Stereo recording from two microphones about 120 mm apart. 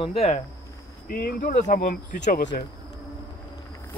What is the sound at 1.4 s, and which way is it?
Speech, 90° left.